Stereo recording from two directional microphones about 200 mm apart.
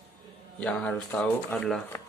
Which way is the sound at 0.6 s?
5° left (ahead or behind).